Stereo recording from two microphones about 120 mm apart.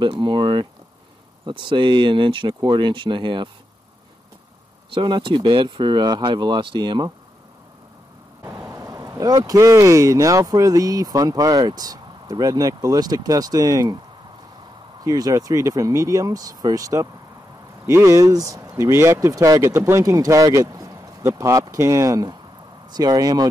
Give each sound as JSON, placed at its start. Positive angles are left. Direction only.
{"t": 0.0, "sound": "speech", "side_deg": -40}
{"t": 4.9, "sound": "speech", "side_deg": -45}
{"t": 8.5, "sound": "speech", "side_deg": -25}
{"t": 15.0, "sound": "speech", "side_deg": -30}